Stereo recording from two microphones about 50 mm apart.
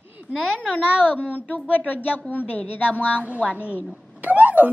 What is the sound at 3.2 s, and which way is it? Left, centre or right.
Speech, right.